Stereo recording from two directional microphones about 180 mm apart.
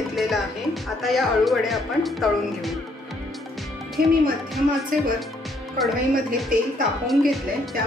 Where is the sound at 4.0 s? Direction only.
55° right (ahead or behind).